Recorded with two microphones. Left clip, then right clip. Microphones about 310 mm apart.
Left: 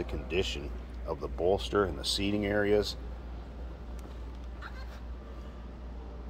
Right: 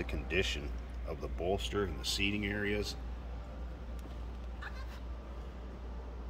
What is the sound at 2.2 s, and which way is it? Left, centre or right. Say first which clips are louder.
Speech: left 9 dB; left.